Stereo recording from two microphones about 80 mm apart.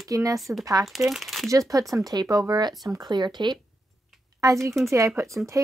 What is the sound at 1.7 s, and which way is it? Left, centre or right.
Speech, right.